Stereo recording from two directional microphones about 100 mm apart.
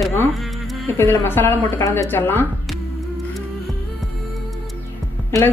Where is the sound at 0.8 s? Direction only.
20° left (ahead or behind).